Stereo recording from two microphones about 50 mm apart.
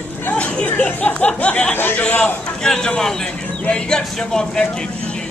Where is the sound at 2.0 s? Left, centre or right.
Left.